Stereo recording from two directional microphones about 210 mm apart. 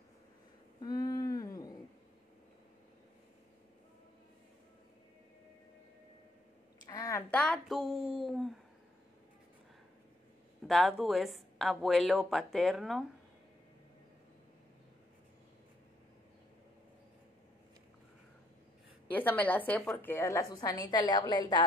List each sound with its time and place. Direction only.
0.7 s a sound: 20° left (ahead or behind)
6.9 s speech: 15° left (ahead or behind); by 8.5 s centre (ahead or behind)
10.7 s a woman's voice: centre (ahead or behind)
19.0 s a woman's voice: 10° left (ahead or behind)